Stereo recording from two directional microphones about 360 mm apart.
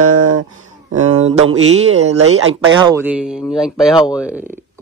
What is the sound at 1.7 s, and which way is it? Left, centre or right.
Speech, centre.